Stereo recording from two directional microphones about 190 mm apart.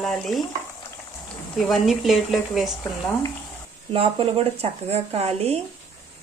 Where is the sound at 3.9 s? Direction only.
30° right (ahead or behind).